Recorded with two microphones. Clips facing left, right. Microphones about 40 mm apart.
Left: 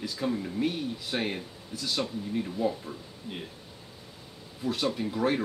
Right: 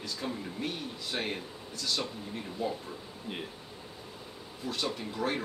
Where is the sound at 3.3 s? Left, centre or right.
Centre.